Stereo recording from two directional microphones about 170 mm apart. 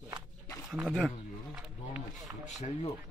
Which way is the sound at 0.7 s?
5° right (ahead or behind).